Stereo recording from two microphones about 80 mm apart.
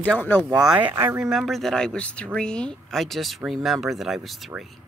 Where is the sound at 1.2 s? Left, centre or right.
Centre.